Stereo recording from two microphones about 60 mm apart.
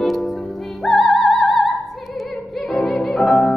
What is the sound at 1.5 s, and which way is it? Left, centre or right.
Opera, centre.